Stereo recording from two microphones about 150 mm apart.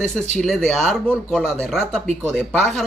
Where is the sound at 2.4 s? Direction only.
Centre (ahead or behind).